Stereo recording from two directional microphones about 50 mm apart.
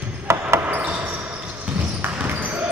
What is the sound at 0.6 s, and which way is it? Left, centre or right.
Basketball bounce, right.